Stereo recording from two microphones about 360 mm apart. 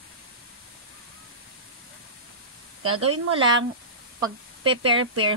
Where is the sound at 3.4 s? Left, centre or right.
Centre.